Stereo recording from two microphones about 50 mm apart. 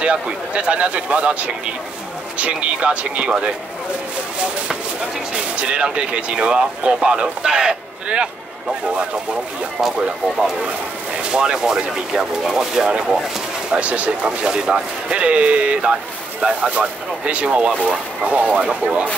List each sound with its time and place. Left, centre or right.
0.0 s speech: right
5.3 s speech: right
11.2 s speech: centre
13.7 s speech: right